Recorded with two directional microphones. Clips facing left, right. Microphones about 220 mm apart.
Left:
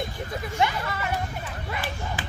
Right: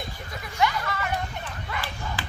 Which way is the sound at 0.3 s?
25° left (ahead or behind).